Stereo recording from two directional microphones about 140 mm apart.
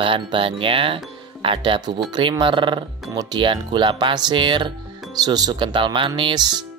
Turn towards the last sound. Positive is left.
turn(degrees=-30)  # may be behind; listen again after turning